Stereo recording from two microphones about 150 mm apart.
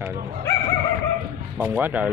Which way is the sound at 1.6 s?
15° right (ahead or behind).